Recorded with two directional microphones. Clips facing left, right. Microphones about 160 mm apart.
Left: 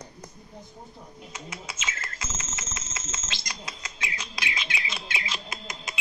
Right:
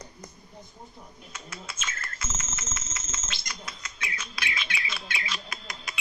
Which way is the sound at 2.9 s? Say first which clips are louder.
Left 2 dB; 90° left.